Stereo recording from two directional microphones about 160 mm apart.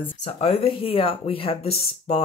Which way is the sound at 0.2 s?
40° left (ahead or behind).